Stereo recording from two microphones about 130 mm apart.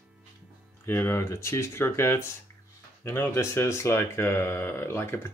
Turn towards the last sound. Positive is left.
turn(degrees=20)  # may be behind; listen again after turning